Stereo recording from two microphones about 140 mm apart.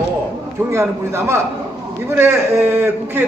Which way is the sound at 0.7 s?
20° right (ahead or behind).